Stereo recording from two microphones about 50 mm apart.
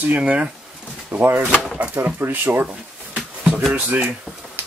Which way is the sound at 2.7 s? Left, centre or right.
Right.